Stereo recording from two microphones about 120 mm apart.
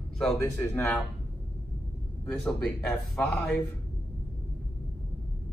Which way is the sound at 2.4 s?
5° left (ahead or behind).